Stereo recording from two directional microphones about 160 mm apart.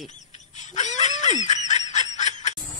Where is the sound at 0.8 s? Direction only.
45° left (ahead or behind).